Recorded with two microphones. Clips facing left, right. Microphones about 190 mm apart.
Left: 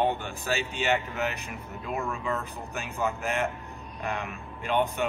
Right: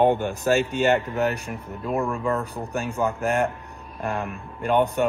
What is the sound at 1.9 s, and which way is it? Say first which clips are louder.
Speech: right 7 dB; 55° right (ahead or behind).